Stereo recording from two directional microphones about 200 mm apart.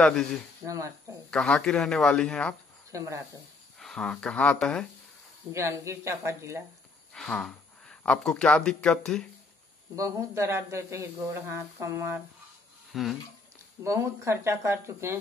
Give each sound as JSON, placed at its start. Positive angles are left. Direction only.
{"t": 0.0, "sound": "speech", "side_deg": 0}
{"t": 0.7, "sound": "speech", "side_deg": -15}
{"t": 1.3, "sound": "speech", "side_deg": 5}
{"t": 2.9, "sound": "speech", "side_deg": -15}
{"t": 3.8, "sound": "speech", "side_deg": 5}
{"t": 5.5, "sound": "speech", "side_deg": -15}
{"t": 7.2, "sound": "speech", "side_deg": 5}
{"t": 9.9, "sound": "speech", "side_deg": -15}
{"t": 12.9, "sound": "speech", "side_deg": 0}
{"t": 13.8, "sound": "speech", "side_deg": -15}